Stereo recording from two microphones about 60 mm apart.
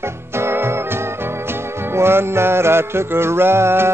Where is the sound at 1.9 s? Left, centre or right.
Right.